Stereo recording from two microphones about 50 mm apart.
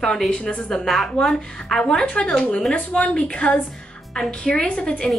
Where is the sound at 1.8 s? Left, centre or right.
Centre.